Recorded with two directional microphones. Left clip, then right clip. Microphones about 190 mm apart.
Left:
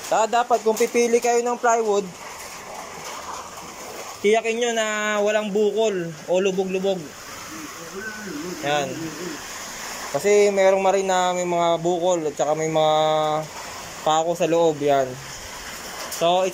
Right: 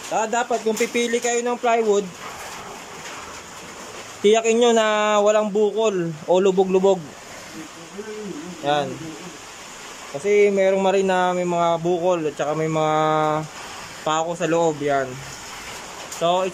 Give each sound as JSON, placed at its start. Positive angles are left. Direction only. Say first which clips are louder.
{"t": 0.1, "sound": "speech", "louder": "left 3 dB", "side_deg": -5}
{"t": 4.2, "sound": "speech", "louder": "right 4 dB", "side_deg": -20}
{"t": 8.6, "sound": "speech", "louder": "right 2 dB", "side_deg": -15}
{"t": 10.2, "sound": "speech", "louder": "even", "side_deg": -10}
{"t": 16.2, "sound": "speech", "louder": "left 1 dB", "side_deg": -5}